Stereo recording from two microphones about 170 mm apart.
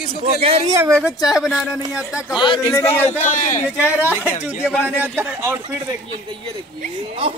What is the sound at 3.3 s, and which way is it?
Speech, 50° left (ahead or behind).